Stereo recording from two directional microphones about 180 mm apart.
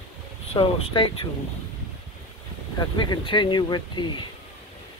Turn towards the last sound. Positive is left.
turn(degrees=25)  # may be behind; listen again after turning